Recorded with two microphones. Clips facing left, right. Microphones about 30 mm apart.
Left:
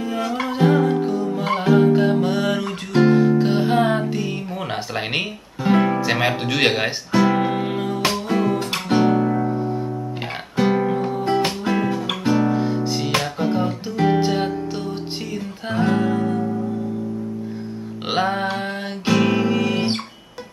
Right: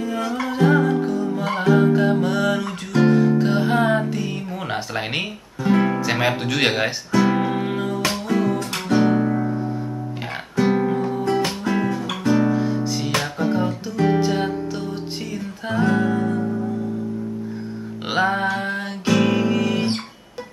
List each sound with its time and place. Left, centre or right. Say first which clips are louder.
0.0 s music: left 1 dB; centre
5.8 s speech: left 2 dB; centre
7.2 s music: left 1 dB; centre
8.9 s guitar: even; centre
10.6 s music: even; centre
15.7 s music: even; centre
16.2 s music: even; centre
18.1 s music: right 1 dB; centre